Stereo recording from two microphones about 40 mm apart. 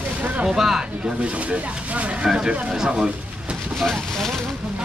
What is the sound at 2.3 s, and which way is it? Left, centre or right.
Speech, centre.